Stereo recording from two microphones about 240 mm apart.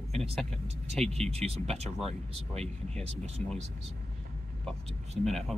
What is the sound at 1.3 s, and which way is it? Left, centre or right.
Speech, right.